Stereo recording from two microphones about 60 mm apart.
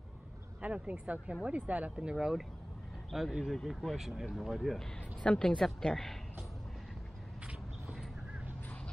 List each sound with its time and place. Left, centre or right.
0.6 s speech: right; by 4.8 s centre
5.2 s speech: centre